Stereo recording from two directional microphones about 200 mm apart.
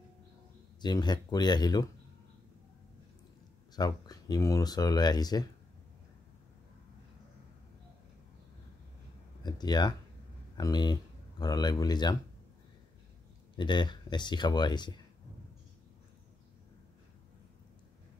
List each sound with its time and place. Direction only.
0.7 s speech: 20° left (ahead or behind)
3.7 s speech: 20° left (ahead or behind)
9.4 s a sound: 20° left (ahead or behind)
10.6 s speech: 20° left (ahead or behind)
13.6 s speech: 20° left (ahead or behind)